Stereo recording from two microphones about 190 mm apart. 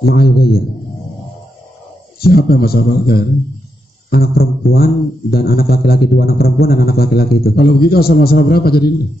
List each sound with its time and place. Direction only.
0.0 s a man's voice: 55° left (ahead or behind)
2.1 s speech: 55° left (ahead or behind)